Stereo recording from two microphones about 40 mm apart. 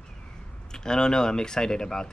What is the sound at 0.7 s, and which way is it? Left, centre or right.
Speech, centre.